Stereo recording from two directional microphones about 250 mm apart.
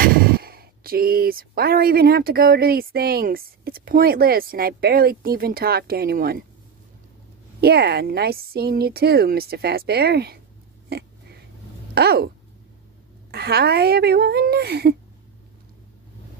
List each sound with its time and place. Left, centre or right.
0.0 s speech: right
7.6 s speech: right
10.9 s a sound: right
11.9 s speech: right
13.3 s speech: right